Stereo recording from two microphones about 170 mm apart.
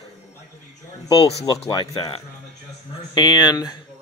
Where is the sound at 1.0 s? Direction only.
30° left (ahead or behind).